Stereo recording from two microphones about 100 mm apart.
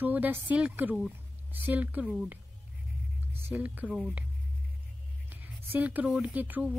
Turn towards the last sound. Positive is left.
turn(degrees=-15)  # may be behind; listen again after turning